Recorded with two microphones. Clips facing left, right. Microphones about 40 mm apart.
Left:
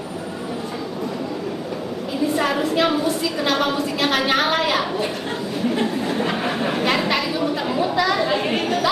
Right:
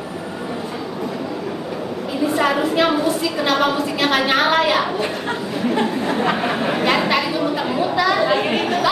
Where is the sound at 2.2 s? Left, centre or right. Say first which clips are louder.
Right 3 dB; centre.